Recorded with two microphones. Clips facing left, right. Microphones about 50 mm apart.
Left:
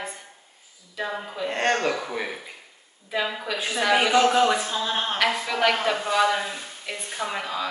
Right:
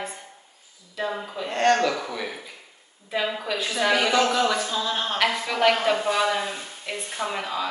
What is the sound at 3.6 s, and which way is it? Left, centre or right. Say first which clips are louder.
Speech: left 1 dB; centre.